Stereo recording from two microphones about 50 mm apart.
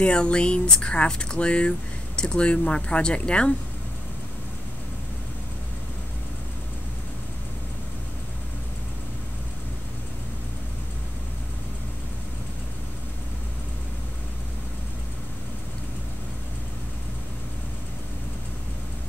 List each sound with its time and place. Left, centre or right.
0.0 s speech: centre